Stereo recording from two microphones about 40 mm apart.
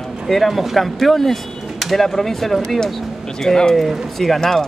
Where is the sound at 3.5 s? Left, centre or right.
Centre.